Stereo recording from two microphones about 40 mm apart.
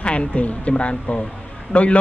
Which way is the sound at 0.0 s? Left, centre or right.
Left.